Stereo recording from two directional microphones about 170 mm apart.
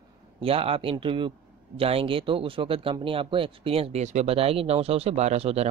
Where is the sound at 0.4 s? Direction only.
35° right (ahead or behind).